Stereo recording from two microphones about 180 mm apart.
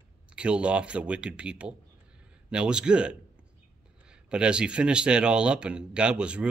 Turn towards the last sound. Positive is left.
turn(degrees=-5)  # may be behind; listen again after turning